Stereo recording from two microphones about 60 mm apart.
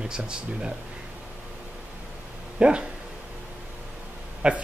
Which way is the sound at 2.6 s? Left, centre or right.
Centre.